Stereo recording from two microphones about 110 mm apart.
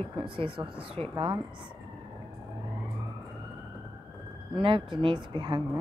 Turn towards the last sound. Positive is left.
turn(degrees=-45)  # may be behind; listen again after turning